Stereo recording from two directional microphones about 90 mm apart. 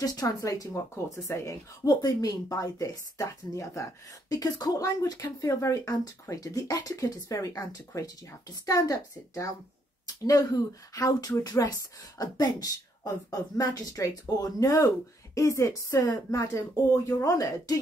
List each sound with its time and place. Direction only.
0.0 s speech: 40° left (ahead or behind)
5.2 s a woman's voice: 25° left (ahead or behind)